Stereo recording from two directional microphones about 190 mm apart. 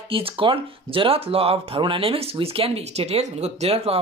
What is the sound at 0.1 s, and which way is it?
Speech, 30° right (ahead or behind).